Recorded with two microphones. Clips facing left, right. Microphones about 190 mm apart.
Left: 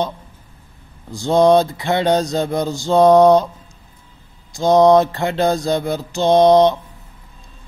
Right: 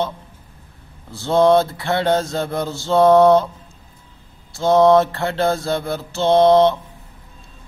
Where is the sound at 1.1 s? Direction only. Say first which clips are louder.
Left 2 dB; 15° left (ahead or behind).